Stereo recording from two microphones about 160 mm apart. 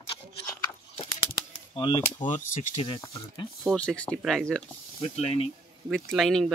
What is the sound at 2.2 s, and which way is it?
Speech, 50° left (ahead or behind).